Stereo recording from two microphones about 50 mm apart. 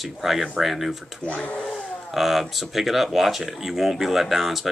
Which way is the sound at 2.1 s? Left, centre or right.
Centre.